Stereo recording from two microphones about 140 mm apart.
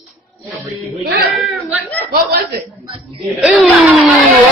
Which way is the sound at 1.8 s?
10° left (ahead or behind).